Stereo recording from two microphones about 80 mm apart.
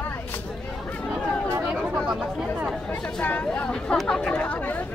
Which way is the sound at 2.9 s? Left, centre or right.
Left.